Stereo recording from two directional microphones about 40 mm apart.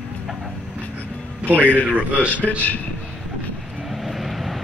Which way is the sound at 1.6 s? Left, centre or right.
Left.